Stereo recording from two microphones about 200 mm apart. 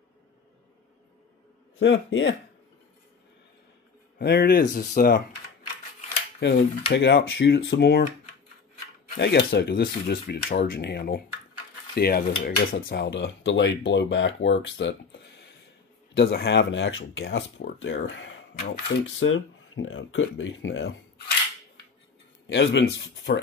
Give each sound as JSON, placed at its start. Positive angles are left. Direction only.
{"t": 1.8, "sound": "speech", "side_deg": 60}
{"t": 4.2, "sound": "speech", "side_deg": 50}
{"t": 6.4, "sound": "speech", "side_deg": 60}
{"t": 9.1, "sound": "speech", "side_deg": 55}
{"t": 11.9, "sound": "cutlery", "side_deg": 50}
{"t": 12.4, "sound": "speech", "side_deg": 55}
{"t": 16.2, "sound": "speech", "side_deg": 55}
{"t": 22.5, "sound": "speech", "side_deg": 65}